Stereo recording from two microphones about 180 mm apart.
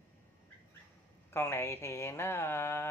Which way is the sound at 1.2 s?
15° left (ahead or behind).